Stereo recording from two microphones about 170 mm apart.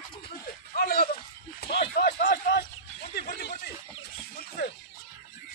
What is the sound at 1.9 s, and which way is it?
Speech, 65° left (ahead or behind).